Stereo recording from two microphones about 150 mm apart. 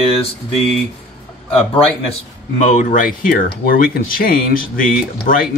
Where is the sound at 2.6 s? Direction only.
55° left (ahead or behind).